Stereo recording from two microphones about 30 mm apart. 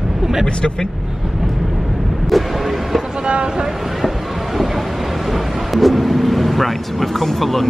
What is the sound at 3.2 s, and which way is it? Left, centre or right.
Vehicle, right.